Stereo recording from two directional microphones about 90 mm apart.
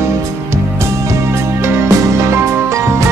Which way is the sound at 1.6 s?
30° right (ahead or behind).